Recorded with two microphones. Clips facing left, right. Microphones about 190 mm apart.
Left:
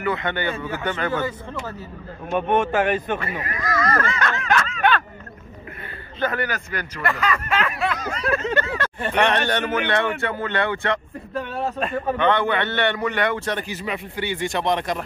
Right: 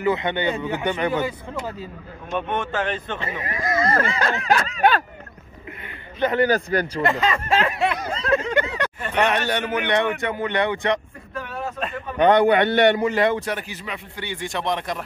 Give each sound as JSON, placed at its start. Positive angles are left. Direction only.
{"t": 0.0, "sound": "speech", "side_deg": -20}
{"t": 2.3, "sound": "speech", "side_deg": 50}
{"t": 3.2, "sound": "speech", "side_deg": -25}
{"t": 6.2, "sound": "speech", "side_deg": -25}
{"t": 7.0, "sound": "a sound", "side_deg": -25}
{"t": 9.1, "sound": "speech", "side_deg": -10}
{"t": 11.3, "sound": "a sound", "side_deg": 35}
{"t": 12.2, "sound": "speech", "side_deg": -40}
{"t": 12.9, "sound": "a sound", "side_deg": -25}
{"t": 13.5, "sound": "speech", "side_deg": -5}